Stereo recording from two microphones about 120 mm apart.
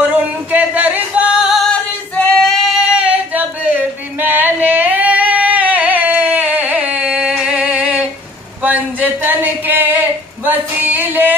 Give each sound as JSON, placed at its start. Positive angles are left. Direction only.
{"t": 0.0, "sound": "music", "side_deg": -15}
{"t": 1.7, "sound": "female singing", "side_deg": 5}
{"t": 8.6, "sound": "a sound", "side_deg": -15}